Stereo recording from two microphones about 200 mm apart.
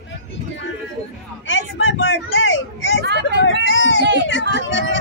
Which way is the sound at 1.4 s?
70° left (ahead or behind).